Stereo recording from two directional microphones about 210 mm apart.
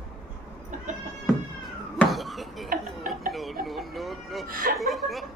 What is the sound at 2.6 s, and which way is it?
Tick-tock, 40° right (ahead or behind).